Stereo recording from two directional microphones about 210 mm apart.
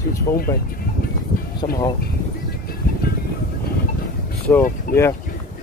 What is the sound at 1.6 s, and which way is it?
Speech, 25° left (ahead or behind).